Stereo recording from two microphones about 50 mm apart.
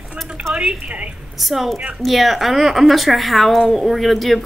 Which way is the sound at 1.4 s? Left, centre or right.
Centre.